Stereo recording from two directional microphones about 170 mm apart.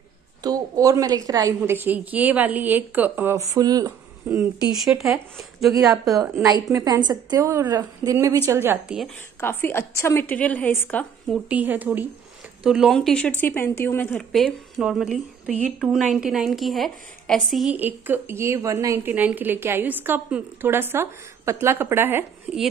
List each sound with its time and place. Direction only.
0.4 s a woman's voice: 20° right (ahead or behind)
1.9 s a woman's voice: 10° right (ahead or behind)
4.7 s speech: centre (ahead or behind)
6.3 s a woman's voice: 20° right (ahead or behind)
9.4 s a woman's voice: 15° left (ahead or behind)
11.4 s a woman's voice: 10° right (ahead or behind); by 14.0 s 15° left (ahead or behind)
14.1 s a woman's voice: centre (ahead or behind)